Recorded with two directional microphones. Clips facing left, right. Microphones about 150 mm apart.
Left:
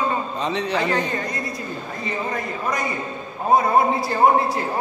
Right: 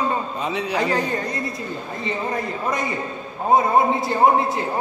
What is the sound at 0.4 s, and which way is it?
Speech, 5° right (ahead or behind).